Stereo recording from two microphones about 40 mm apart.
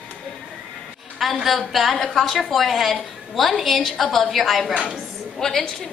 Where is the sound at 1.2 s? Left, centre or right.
Centre.